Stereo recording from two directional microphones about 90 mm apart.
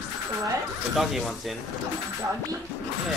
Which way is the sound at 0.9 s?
5° right (ahead or behind).